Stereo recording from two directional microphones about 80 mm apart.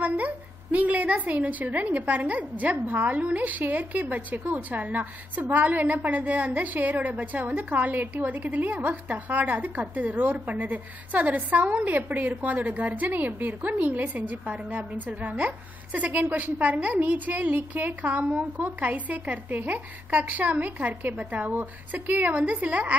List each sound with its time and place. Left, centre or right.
0.0 s a woman's voice: centre